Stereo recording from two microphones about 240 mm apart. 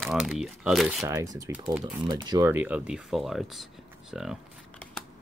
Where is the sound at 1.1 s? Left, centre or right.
Centre.